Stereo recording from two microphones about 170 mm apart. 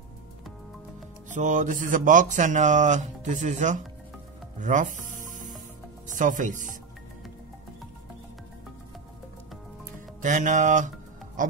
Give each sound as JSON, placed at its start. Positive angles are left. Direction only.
{"t": 1.3, "sound": "speech", "side_deg": -45}
{"t": 4.6, "sound": "music", "side_deg": -45}
{"t": 6.0, "sound": "speech", "side_deg": -50}
{"t": 10.2, "sound": "speech", "side_deg": -45}